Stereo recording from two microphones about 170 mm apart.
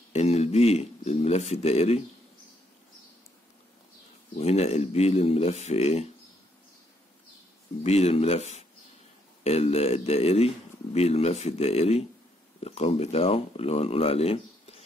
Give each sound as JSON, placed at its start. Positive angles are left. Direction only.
{"t": 0.1, "sound": "a sound", "side_deg": 40}
{"t": 4.4, "sound": "speech", "side_deg": 40}
{"t": 7.8, "sound": "speech", "side_deg": 40}